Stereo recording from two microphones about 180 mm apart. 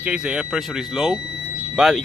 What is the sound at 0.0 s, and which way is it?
Speech, 5° right (ahead or behind).